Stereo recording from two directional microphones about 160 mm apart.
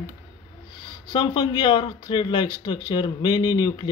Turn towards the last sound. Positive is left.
turn(degrees=25)  # may be behind; listen again after turning